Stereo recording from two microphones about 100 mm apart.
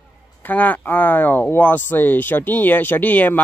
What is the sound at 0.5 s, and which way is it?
Speech, 15° left (ahead or behind).